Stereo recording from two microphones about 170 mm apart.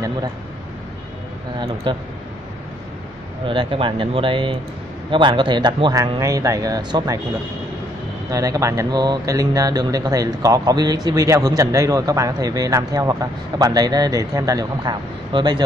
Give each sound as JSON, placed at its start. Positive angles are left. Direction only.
{"t": 1.9, "sound": "speech", "side_deg": -30}
{"t": 3.4, "sound": "speech", "side_deg": -30}
{"t": 8.3, "sound": "speech", "side_deg": -20}